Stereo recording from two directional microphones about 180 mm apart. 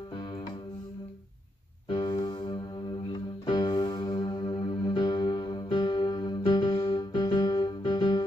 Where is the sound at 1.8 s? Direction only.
25° left (ahead or behind).